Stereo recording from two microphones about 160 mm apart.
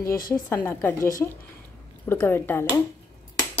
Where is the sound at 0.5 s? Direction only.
15° left (ahead or behind).